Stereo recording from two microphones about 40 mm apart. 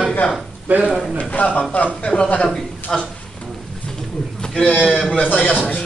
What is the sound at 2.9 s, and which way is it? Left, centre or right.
Speech, centre.